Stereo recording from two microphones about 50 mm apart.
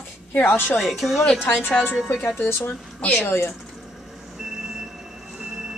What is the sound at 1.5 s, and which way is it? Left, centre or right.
Speech, left.